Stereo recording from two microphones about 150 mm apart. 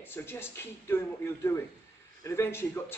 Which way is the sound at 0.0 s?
15° left (ahead or behind).